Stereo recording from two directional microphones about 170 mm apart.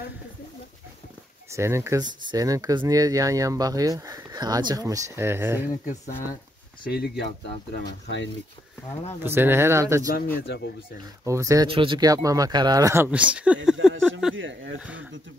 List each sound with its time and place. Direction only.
1.5 s speech: 15° right (ahead or behind)
6.8 s speech: 65° left (ahead or behind); by 8.3 s 85° left
9.2 s speech: 10° right (ahead or behind)
10.4 s speech: 75° left (ahead or behind)
11.2 s speech: 20° right (ahead or behind)
11.6 s speech: 30° right (ahead or behind); by 14.3 s 5° right (ahead or behind)
14.4 s speech: 90° right